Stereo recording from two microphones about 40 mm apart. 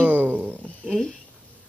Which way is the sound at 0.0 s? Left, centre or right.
Right.